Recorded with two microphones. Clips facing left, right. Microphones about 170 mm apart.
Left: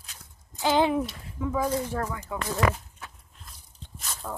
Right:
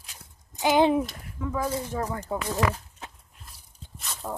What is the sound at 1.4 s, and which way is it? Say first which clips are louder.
Speech: left 2 dB; 10° left (ahead or behind).